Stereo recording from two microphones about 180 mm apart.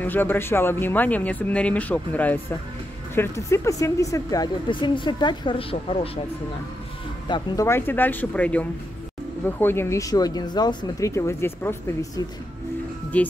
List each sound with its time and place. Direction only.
0.0 s speech: 10° left (ahead or behind); by 6.0 s 30° left (ahead or behind)
7.2 s speech: 20° left (ahead or behind)
13.1 s speech: 10° left (ahead or behind)